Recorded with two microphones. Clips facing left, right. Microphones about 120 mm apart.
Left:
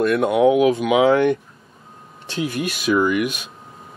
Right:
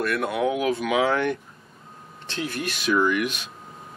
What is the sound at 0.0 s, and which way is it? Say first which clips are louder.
Speech: left 8 dB; 20° left (ahead or behind).